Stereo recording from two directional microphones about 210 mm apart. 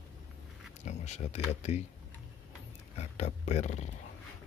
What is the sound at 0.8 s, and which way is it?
Speech, 30° left (ahead or behind).